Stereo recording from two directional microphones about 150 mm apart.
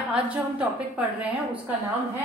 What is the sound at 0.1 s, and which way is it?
Speech, 10° right (ahead or behind).